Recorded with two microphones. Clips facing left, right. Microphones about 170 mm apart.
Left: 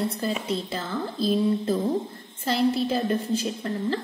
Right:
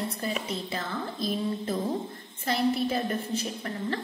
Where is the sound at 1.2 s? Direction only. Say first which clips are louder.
Left 8 dB; 30° left (ahead or behind).